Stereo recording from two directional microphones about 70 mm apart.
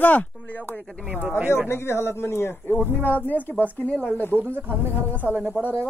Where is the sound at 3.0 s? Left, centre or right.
Left.